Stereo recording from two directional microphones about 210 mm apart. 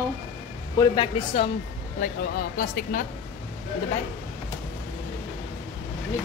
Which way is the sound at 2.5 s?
40° left (ahead or behind).